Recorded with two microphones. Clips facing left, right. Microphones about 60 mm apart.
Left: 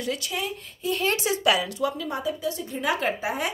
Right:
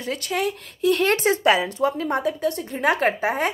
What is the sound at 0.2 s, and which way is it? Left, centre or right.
Speech, right.